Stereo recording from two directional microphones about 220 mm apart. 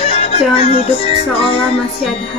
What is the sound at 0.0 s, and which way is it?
Music, 30° left (ahead or behind).